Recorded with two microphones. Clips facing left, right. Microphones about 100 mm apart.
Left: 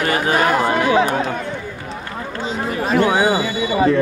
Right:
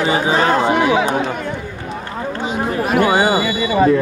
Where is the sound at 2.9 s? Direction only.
50° right (ahead or behind).